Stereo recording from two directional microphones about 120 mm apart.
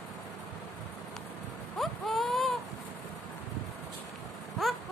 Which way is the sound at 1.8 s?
Centre (ahead or behind).